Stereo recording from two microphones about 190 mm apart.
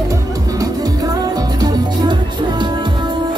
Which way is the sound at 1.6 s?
25° right (ahead or behind).